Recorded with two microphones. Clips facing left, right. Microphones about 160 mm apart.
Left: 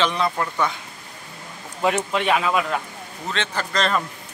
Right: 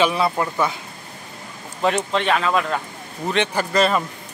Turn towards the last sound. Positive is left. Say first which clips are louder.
# right 4 dB
turn(degrees=-10)  # may be behind; listen again after turning